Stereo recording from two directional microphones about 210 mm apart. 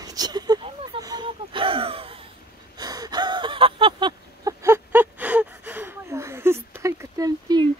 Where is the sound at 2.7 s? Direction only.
20° right (ahead or behind).